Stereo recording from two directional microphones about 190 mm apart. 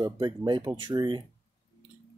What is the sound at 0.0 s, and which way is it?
Speech, 20° right (ahead or behind).